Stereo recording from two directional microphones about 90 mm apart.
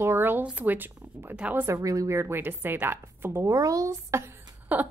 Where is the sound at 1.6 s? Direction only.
35° right (ahead or behind).